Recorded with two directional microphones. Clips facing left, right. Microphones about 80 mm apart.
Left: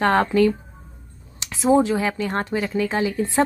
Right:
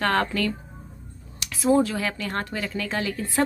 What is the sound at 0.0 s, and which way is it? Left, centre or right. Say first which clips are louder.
Speech: left 6 dB; left.